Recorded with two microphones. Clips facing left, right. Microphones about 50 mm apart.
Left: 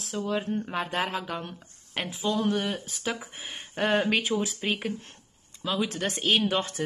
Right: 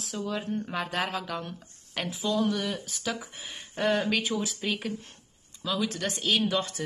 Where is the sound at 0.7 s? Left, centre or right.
Centre.